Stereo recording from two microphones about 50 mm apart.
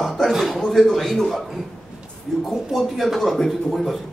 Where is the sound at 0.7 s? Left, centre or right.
Centre.